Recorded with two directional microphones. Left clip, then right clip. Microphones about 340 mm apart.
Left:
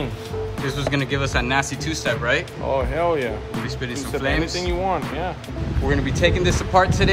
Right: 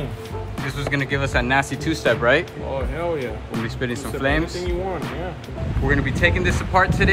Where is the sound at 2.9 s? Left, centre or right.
Left.